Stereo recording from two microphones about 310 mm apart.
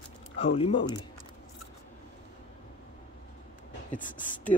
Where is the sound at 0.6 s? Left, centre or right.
Centre.